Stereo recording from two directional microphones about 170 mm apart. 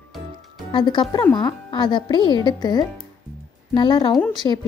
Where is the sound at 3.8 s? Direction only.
25° left (ahead or behind).